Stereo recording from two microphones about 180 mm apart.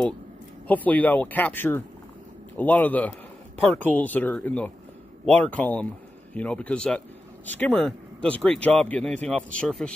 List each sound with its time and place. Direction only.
0.7 s a man's voice: 10° left (ahead or behind)